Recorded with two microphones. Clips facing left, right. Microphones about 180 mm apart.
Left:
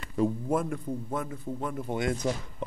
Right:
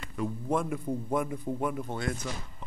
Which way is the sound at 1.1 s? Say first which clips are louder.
Right 3 dB; 15° right (ahead or behind).